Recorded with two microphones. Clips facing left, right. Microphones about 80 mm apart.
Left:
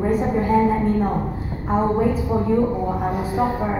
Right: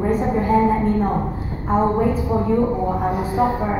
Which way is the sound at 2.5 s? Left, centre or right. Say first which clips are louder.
Right 1 dB; centre.